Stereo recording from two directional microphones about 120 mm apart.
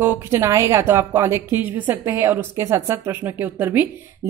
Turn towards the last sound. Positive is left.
turn(degrees=-15)  # may be behind; listen again after turning